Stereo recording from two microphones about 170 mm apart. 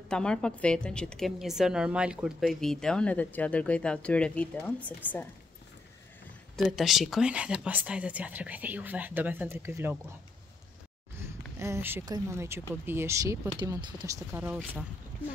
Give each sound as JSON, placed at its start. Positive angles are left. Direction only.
{"t": 0.1, "sound": "a woman's voice", "side_deg": 5}
{"t": 6.5, "sound": "speech", "side_deg": 0}
{"t": 11.5, "sound": "speech", "side_deg": -15}